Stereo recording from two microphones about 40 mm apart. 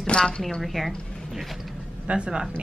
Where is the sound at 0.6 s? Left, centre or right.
Centre.